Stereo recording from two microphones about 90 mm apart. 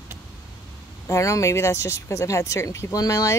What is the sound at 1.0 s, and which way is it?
Speech, 35° left (ahead or behind).